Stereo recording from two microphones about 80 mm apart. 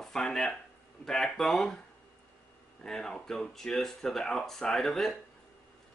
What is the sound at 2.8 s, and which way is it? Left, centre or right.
Speech, centre.